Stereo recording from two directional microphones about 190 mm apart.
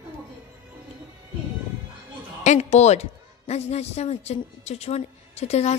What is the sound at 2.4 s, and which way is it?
A woman's voice, 35° left (ahead or behind).